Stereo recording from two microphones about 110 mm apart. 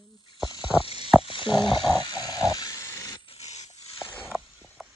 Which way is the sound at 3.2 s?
75° left (ahead or behind).